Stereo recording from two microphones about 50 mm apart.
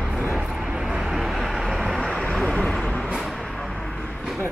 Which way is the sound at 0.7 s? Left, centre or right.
Centre.